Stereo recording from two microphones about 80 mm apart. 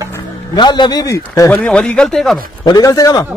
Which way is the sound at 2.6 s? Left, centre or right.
Left.